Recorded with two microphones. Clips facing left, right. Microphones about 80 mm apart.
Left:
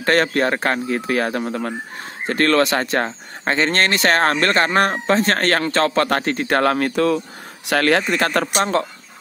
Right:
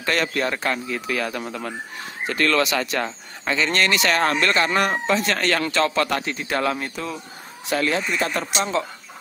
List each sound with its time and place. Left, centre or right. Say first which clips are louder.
0.0 s speech: left 6 dB; left